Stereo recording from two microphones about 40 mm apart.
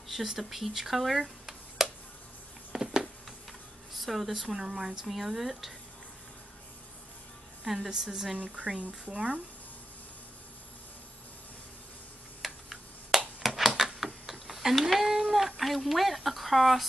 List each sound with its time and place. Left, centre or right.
0.1 s speech: centre
2.7 s a sound: centre
3.9 s speech: centre
7.6 s a woman's voice: centre
8.5 s speech: right
12.4 s a sound: centre
13.9 s tick-tock: centre
15.3 s speech: centre